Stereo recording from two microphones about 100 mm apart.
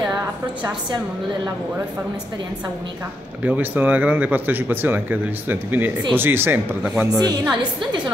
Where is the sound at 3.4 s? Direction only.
15° right (ahead or behind).